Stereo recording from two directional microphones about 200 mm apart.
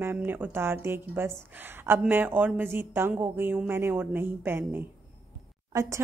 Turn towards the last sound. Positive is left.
turn(degrees=-20)  # may be behind; listen again after turning